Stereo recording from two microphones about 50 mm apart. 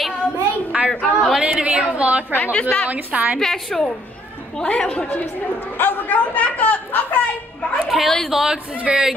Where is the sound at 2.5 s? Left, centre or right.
Left.